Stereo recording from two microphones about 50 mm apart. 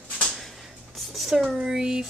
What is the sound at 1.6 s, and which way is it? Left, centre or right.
Speech, centre.